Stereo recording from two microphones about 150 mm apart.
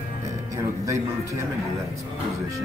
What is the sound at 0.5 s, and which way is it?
Speech, 20° right (ahead or behind).